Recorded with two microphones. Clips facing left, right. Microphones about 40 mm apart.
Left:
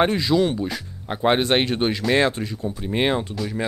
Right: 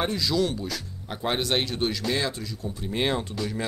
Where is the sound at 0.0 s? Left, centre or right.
Left.